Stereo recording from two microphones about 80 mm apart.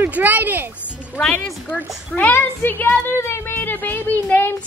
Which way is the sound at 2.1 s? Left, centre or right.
Left.